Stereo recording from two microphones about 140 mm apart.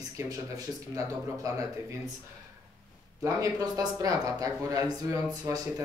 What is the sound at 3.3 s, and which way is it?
Speech, 25° right (ahead or behind).